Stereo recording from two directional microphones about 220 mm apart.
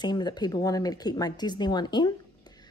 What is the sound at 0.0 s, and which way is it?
Speech, 20° left (ahead or behind).